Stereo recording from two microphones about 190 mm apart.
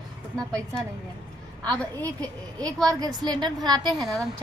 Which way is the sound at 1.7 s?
5° left (ahead or behind).